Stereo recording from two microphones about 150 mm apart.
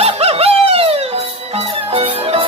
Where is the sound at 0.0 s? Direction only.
40° right (ahead or behind).